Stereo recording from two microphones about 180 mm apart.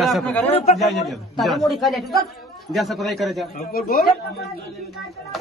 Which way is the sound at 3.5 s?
55° left (ahead or behind).